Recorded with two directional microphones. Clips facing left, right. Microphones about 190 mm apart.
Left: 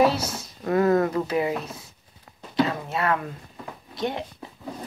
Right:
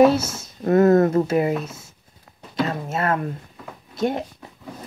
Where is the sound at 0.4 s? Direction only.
40° right (ahead or behind).